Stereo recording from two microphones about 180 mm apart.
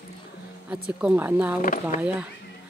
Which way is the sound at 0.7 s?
5° right (ahead or behind).